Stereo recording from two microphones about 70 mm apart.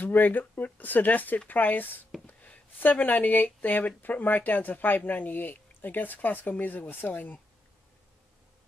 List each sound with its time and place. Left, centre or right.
0.0 s speech: left